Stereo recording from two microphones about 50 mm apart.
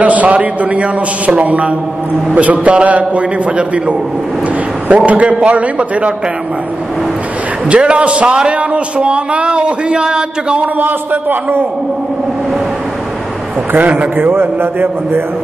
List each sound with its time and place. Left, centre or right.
0.0 s a man's voice: right
7.7 s a man's voice: right
10.6 s a man's voice: right
13.7 s a man's voice: right